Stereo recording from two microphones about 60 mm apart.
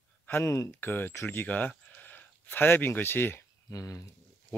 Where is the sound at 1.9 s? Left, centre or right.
Left.